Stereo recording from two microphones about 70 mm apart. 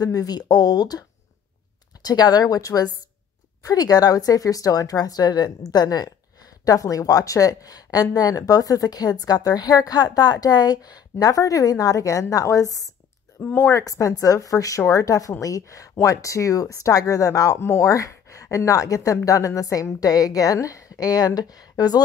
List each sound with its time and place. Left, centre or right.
0.0 s speech: left
2.0 s speech: left